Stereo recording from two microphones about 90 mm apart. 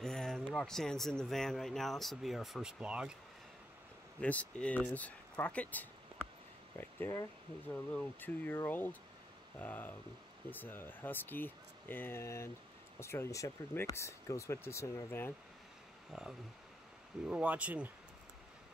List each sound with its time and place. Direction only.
0.0 s speech: 5° left (ahead or behind); by 3.1 s 10° right (ahead or behind)
4.2 s speech: 15° left (ahead or behind)
7.0 s speech: 30° left (ahead or behind)
7.7 s speech: 15° left (ahead or behind)
16.1 s speech: 5° right (ahead or behind)